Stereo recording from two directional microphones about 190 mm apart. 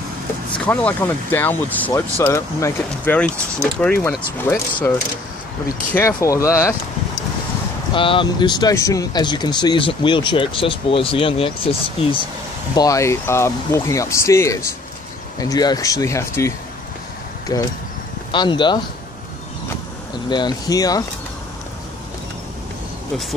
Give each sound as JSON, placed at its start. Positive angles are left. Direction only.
{"t": 0.7, "sound": "speech", "side_deg": 10}
{"t": 5.9, "sound": "speech", "side_deg": 15}
{"t": 7.9, "sound": "speech", "side_deg": 25}
{"t": 12.7, "sound": "speech", "side_deg": 15}
{"t": 20.2, "sound": "speech", "side_deg": 20}